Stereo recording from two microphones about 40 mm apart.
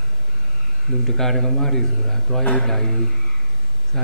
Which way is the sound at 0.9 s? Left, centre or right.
Centre.